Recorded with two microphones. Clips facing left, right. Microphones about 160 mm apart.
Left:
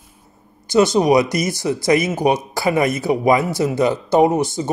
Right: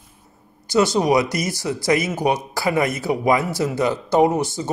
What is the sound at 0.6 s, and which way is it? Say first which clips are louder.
Speech: left 3 dB; 20° left (ahead or behind).